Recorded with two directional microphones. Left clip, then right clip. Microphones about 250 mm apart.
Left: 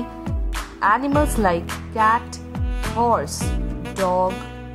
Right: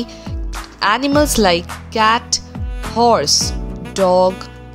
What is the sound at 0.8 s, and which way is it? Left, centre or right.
A woman's voice, right.